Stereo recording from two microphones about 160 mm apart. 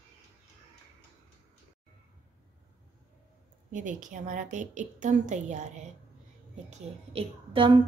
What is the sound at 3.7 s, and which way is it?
A woman's voice, 55° right (ahead or behind).